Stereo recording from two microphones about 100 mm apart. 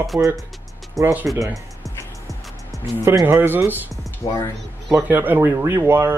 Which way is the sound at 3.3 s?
20° right (ahead or behind).